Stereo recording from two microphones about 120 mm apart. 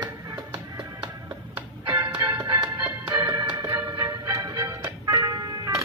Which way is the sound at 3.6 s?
15° right (ahead or behind).